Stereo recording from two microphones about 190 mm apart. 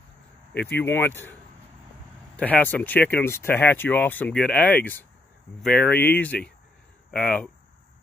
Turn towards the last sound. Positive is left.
turn(degrees=5)  # may be behind; listen again after turning